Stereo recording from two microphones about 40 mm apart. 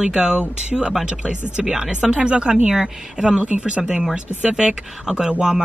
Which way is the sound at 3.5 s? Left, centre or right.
Right.